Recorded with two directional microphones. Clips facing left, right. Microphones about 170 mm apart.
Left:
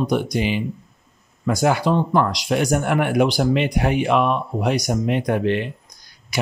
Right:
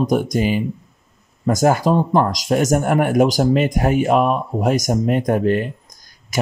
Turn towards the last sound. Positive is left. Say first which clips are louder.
# right 3 dB
turn(degrees=-45)  # may be behind; listen again after turning